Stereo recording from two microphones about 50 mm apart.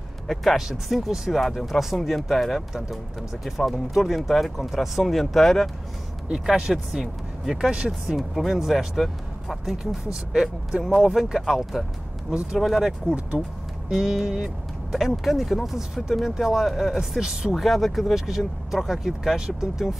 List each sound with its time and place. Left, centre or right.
0.3 s speech: centre
6.4 s speech: centre
17.2 s speech: centre
17.6 s speech: centre